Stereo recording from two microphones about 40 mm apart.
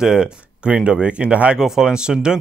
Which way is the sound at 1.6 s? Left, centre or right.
Centre.